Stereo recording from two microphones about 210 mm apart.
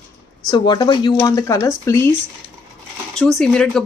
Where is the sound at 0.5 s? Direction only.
20° left (ahead or behind).